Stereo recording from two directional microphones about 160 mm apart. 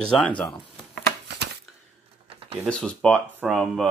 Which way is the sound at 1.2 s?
90° right.